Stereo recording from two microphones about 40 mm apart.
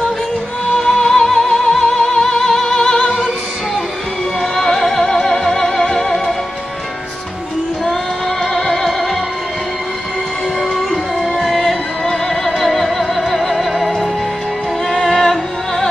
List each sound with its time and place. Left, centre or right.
0.7 s music: centre
4.4 s music: centre
8.5 s music: centre
11.1 s music: centre